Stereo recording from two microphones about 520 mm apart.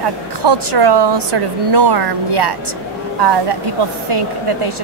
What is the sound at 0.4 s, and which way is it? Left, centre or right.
A woman's voice, right.